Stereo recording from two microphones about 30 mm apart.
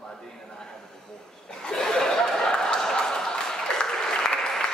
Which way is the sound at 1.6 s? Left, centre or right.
Left.